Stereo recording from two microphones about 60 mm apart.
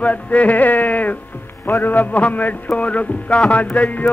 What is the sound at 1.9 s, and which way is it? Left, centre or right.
Music, left.